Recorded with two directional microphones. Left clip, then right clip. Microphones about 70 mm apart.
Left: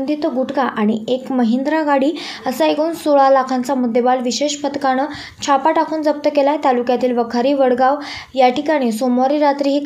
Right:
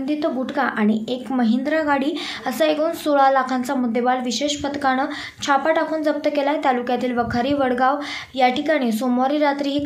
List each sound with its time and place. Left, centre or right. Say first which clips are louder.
0.1 s a woman's voice: left 3 dB; left